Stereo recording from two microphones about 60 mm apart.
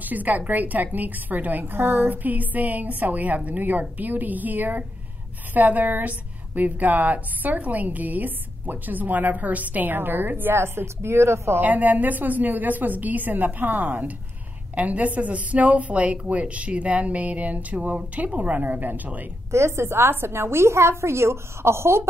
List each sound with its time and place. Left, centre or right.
0.0 s a woman's voice: right
11.6 s a woman's voice: right
19.5 s a woman's voice: right